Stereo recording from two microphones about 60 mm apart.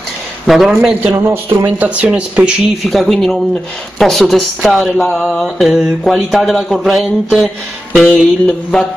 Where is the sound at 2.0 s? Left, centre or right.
Centre.